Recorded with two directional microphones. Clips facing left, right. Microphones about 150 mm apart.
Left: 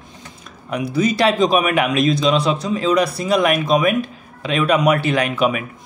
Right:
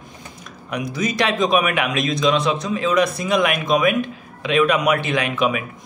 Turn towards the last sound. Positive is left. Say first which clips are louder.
# left 2 dB
turn(degrees=40)  # may be behind; listen again after turning